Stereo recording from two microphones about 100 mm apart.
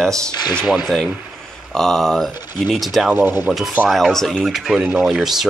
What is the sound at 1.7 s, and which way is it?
Speech, 5° left (ahead or behind).